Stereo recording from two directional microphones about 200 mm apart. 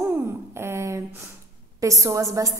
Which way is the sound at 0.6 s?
15° right (ahead or behind).